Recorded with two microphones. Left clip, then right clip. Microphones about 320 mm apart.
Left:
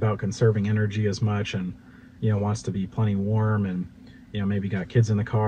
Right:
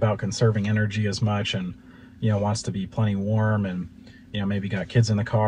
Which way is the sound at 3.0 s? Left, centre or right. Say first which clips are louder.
Right 2 dB; right.